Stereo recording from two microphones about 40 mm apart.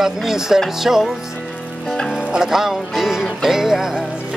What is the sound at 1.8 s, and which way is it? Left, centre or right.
Music, centre.